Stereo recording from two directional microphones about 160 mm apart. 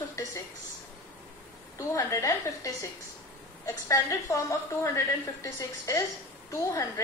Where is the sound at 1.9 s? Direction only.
20° left (ahead or behind).